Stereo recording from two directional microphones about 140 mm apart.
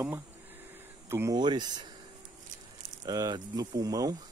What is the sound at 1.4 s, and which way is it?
Speech, 30° right (ahead or behind).